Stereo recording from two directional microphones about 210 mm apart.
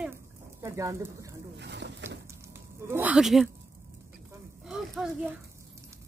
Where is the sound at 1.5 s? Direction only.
55° right (ahead or behind).